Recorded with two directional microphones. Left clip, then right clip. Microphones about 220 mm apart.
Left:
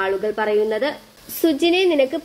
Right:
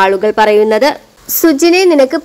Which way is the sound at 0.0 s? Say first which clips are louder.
Right 12 dB; 35° right (ahead or behind).